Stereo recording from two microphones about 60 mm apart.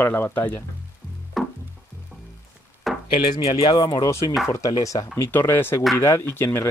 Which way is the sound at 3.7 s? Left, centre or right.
Left.